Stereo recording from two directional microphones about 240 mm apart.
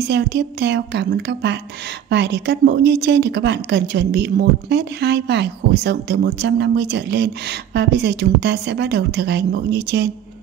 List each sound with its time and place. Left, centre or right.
0.1 s a woman's voice: right